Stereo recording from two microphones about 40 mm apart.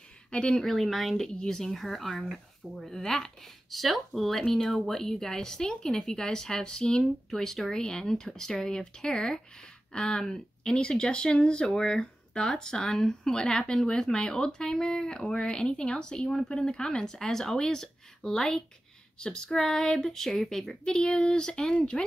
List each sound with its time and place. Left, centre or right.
0.3 s speech: left
0.6 s speech: centre
3.7 s speech: centre
7.2 s speech: centre